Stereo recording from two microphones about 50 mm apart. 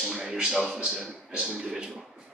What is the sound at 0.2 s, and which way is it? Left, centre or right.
Speech, centre.